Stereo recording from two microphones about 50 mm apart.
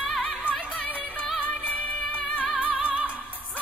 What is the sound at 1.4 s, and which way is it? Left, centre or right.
Music, left.